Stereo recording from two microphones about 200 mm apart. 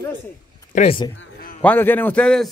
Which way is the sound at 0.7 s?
30° left (ahead or behind).